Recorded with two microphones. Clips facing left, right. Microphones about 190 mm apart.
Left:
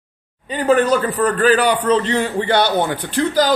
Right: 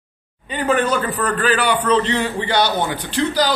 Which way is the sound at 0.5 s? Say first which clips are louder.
Left 4 dB; 40° left (ahead or behind).